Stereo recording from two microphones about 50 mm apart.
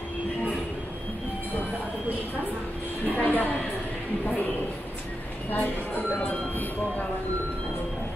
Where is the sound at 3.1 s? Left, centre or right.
Left.